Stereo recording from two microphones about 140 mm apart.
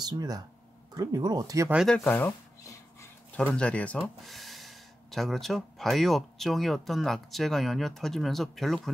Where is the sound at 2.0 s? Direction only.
15° left (ahead or behind).